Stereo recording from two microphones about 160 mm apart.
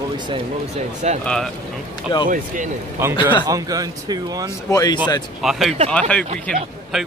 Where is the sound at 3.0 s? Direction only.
15° right (ahead or behind).